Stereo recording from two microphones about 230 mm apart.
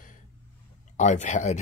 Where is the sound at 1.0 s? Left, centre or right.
Left.